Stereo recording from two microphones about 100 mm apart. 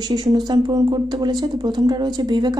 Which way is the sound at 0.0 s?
45° right (ahead or behind).